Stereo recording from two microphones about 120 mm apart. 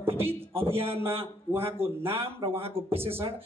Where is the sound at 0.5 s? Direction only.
50° right (ahead or behind).